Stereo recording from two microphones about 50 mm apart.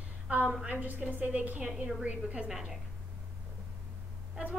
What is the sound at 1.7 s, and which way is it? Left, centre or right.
Speech, centre.